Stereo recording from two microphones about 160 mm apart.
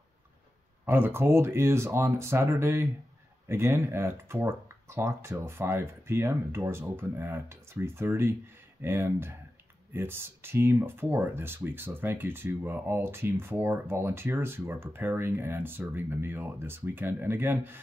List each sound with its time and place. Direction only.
0.8 s speech: 15° right (ahead or behind)